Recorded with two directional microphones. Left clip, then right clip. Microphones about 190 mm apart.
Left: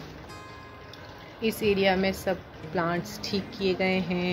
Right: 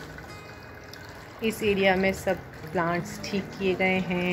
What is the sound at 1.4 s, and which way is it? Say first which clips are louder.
Speech: even; 10° left (ahead or behind).